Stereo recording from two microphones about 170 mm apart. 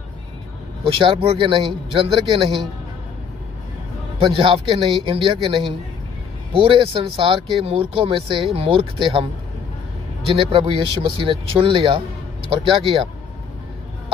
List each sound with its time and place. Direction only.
0.8 s speech: 30° right (ahead or behind)
4.2 s speech: 30° right (ahead or behind)